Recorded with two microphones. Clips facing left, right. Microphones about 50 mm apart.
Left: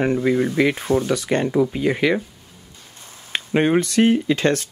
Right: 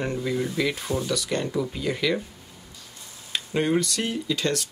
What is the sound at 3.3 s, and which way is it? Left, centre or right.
Speech, left.